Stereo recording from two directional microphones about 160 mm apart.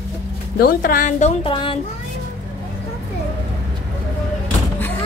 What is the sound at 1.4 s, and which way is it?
Speech, 35° left (ahead or behind).